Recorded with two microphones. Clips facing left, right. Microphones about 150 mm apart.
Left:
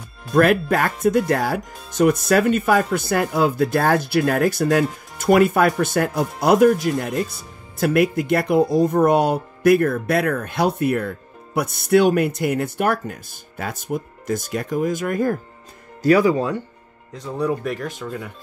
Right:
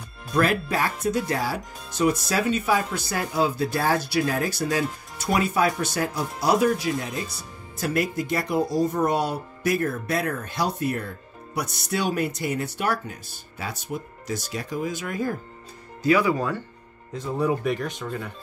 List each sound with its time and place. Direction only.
0.3 s speech: 55° left (ahead or behind)
16.0 s speech: 40° left (ahead or behind)
16.3 s speech: 20° left (ahead or behind)
17.1 s speech: centre (ahead or behind)